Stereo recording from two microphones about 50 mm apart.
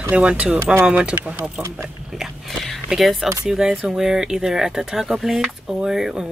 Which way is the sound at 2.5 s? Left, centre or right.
Centre.